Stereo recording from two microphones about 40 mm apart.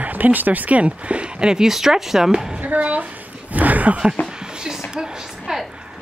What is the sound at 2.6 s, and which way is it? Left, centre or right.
Speech, right.